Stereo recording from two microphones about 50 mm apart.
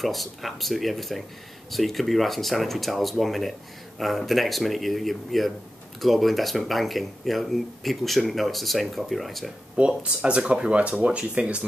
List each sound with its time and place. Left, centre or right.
0.0 s speech: centre
9.8 s speech: right